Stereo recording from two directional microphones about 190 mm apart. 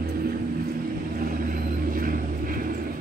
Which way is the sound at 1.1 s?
50° right (ahead or behind).